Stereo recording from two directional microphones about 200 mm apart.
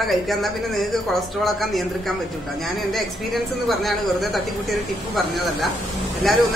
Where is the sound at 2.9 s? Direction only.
Centre (ahead or behind).